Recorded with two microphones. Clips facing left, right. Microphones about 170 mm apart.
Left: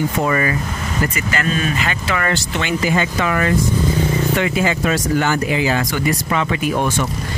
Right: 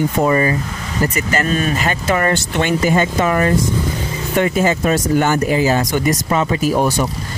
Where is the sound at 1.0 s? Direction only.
40° right (ahead or behind).